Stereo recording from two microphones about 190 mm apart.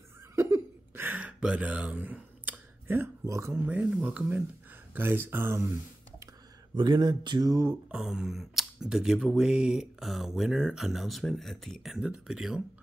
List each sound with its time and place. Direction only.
0.4 s a sound: 15° right (ahead or behind)
4.9 s speech: 10° right (ahead or behind)
6.7 s speech: 25° right (ahead or behind)
7.9 s speech: 5° right (ahead or behind)